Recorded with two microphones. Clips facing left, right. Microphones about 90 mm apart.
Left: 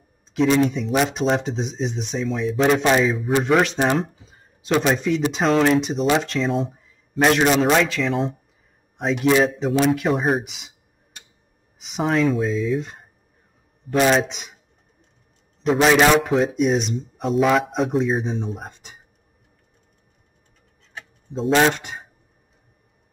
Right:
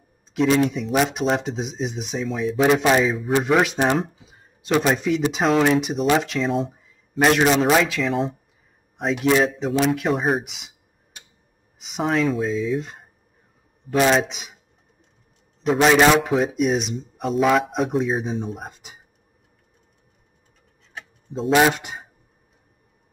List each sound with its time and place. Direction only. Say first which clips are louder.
0.3 s speech: left 1 dB; centre (ahead or behind)
11.8 s speech: left 1 dB; centre (ahead or behind)
15.6 s speech: even; centre (ahead or behind)
20.9 s speech: left 1 dB; centre (ahead or behind)